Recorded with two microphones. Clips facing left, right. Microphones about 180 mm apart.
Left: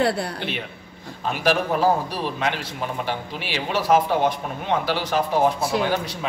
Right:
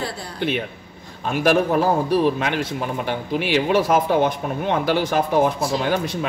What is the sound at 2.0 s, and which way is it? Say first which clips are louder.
A man's voice: right 7 dB; 50° right (ahead or behind).